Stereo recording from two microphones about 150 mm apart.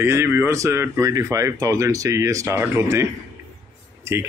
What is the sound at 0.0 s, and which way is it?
Speech, 15° right (ahead or behind).